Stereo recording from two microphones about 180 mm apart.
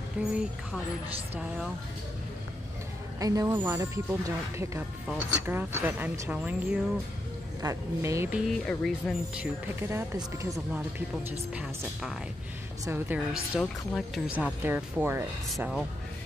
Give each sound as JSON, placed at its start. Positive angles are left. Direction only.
{"t": 0.2, "sound": "speech", "side_deg": -10}
{"t": 3.2, "sound": "speech", "side_deg": -20}
{"t": 8.5, "sound": "a woman's voice", "side_deg": 5}
{"t": 9.4, "sound": "speech", "side_deg": -15}
{"t": 11.2, "sound": "a woman's voice", "side_deg": -5}
{"t": 13.6, "sound": "speech", "side_deg": 0}
{"t": 15.5, "sound": "a woman's voice", "side_deg": 0}